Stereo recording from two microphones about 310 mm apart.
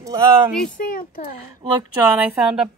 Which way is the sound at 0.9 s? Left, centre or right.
Left.